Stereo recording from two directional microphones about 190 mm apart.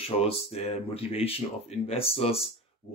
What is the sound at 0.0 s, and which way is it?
Speech, 30° left (ahead or behind).